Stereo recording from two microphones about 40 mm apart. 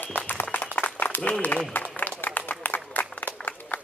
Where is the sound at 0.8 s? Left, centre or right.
Left.